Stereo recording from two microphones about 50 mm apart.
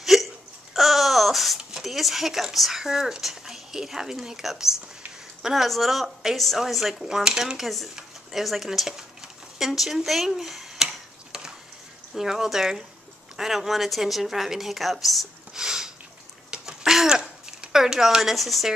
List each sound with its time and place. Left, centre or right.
0.0 s hiccup: centre
0.7 s babbling: centre
1.6 s a woman's voice: centre
12.1 s a woman's voice: centre
15.6 s a sound: centre